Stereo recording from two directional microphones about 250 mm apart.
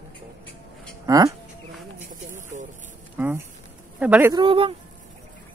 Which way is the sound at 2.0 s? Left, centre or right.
Right.